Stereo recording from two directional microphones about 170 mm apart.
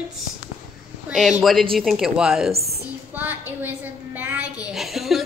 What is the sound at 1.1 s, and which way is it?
A woman's voice, centre (ahead or behind).